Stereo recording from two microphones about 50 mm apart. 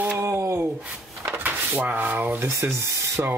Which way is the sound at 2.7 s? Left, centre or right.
Right.